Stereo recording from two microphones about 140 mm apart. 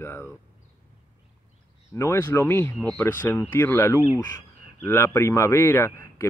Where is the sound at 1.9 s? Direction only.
20° left (ahead or behind).